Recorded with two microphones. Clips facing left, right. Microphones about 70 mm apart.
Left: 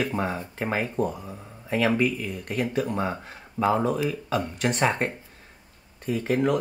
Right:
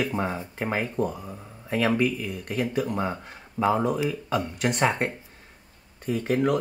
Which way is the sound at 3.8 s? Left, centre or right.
Centre.